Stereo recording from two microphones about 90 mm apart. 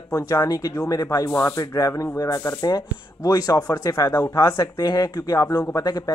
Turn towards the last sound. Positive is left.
turn(degrees=45)  # may be behind; listen again after turning